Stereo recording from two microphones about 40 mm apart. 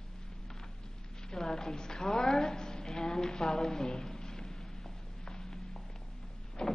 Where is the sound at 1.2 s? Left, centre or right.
Centre.